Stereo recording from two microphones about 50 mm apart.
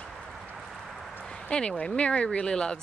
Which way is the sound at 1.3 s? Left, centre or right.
Centre.